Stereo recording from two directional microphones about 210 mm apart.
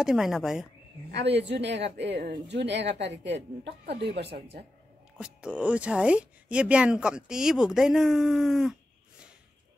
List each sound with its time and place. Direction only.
0.0 s speech: centre (ahead or behind)
1.1 s speech: 55° right (ahead or behind)
5.2 s speech: 5° right (ahead or behind)